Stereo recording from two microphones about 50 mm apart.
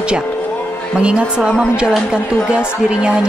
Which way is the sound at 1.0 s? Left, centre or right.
Centre.